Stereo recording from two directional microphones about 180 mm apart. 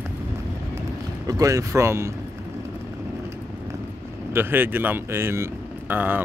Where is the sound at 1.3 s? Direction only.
20° right (ahead or behind).